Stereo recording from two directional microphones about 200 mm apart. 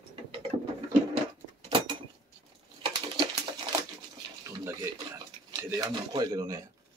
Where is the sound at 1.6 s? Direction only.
25° right (ahead or behind).